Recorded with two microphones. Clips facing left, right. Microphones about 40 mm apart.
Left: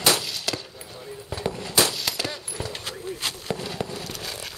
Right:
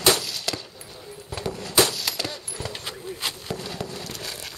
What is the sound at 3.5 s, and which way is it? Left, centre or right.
Fireworks, centre.